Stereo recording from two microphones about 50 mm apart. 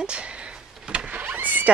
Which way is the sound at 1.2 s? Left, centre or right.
Right.